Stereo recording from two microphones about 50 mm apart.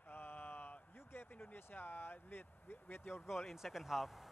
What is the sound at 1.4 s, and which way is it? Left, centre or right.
Speech, left.